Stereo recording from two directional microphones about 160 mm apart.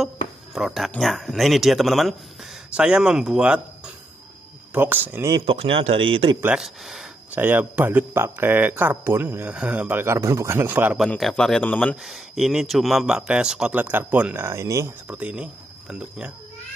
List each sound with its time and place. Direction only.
0.6 s a man's voice: centre (ahead or behind)
5.4 s speech: 35° right (ahead or behind)
6.4 s a man's voice: 5° right (ahead or behind)
11.0 s a man's voice: centre (ahead or behind)